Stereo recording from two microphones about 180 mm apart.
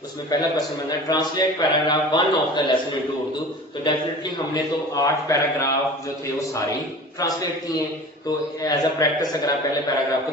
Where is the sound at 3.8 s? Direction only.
25° left (ahead or behind).